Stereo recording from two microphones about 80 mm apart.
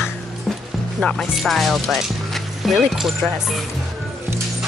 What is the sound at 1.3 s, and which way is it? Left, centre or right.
Speech, centre.